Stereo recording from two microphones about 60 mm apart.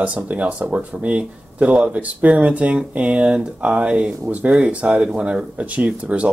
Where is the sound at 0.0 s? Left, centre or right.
Right.